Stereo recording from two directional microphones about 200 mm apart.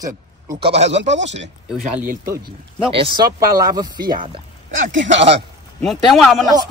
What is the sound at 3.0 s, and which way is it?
Speech, 25° right (ahead or behind).